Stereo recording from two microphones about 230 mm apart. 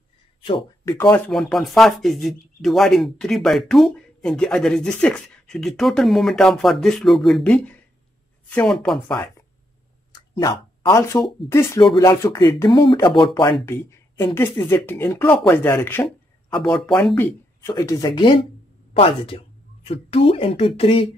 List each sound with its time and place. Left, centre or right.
0.4 s speech: centre
0.9 s speech: centre
10.4 s speech: centre